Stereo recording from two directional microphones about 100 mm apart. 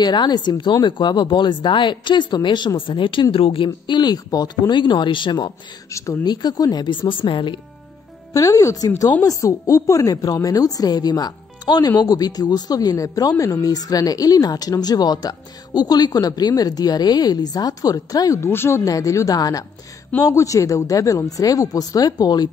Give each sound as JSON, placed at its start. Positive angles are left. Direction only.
{"t": 0.0, "sound": "speech", "side_deg": 45}
{"t": 5.9, "sound": "speech", "side_deg": 30}
{"t": 6.2, "sound": "speech", "side_deg": 45}
{"t": 8.3, "sound": "speech", "side_deg": 35}